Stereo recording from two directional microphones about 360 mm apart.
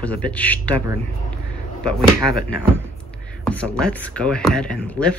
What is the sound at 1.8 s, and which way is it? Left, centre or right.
Speech, centre.